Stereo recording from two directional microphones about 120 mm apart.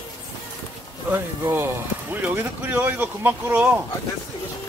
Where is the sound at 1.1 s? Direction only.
20° right (ahead or behind).